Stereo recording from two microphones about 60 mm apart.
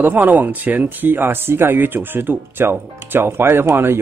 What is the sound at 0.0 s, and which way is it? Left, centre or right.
Speech, right.